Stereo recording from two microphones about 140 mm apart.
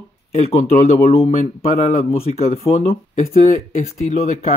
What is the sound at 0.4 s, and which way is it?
Speech, 45° left (ahead or behind).